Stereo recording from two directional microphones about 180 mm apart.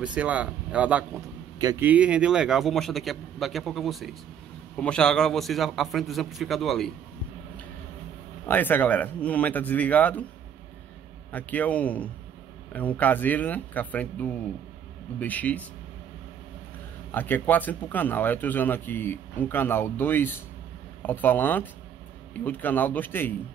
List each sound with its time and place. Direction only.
0.0 s speech: 5° right (ahead or behind)
1.6 s a man's voice: 20° right (ahead or behind)
1.9 s a man's voice: 5° right (ahead or behind)
8.5 s speech: 10° left (ahead or behind)
11.3 s speech: 10° left (ahead or behind)
17.1 s speech: 10° left (ahead or behind)